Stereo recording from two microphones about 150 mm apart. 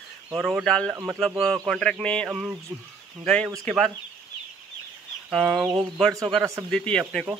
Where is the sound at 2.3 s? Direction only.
5° right (ahead or behind).